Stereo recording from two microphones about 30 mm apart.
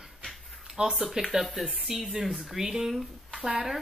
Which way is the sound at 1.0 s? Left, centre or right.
Centre.